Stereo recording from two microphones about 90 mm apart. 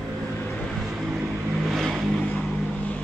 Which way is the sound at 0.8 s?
5° right (ahead or behind).